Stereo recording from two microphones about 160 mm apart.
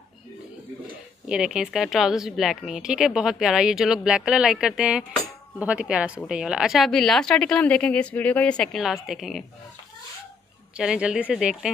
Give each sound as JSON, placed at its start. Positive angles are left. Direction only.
{"t": 1.3, "sound": "a woman's voice", "side_deg": -5}
{"t": 10.8, "sound": "a woman's voice", "side_deg": -5}